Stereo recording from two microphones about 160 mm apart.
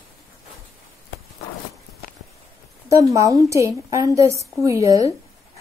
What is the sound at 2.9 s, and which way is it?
A woman's voice, 20° right (ahead or behind).